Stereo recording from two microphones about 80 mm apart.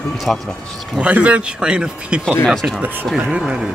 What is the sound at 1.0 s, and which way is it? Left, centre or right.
Speech, centre.